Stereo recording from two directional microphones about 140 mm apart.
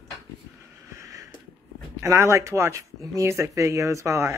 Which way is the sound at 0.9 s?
20° right (ahead or behind).